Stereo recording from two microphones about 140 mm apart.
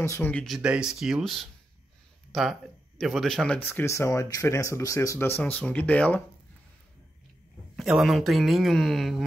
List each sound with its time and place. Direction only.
0.0 s speech: 20° left (ahead or behind)
0.3 s speech: 5° left (ahead or behind)
0.6 s speech: 5° right (ahead or behind); by 5.4 s 20° left (ahead or behind)
5.4 s speech: 10° left (ahead or behind)
7.7 s speech: centre (ahead or behind)